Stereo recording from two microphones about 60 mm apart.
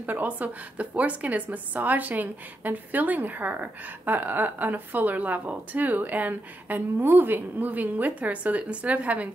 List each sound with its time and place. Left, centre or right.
0.0 s a woman's voice: right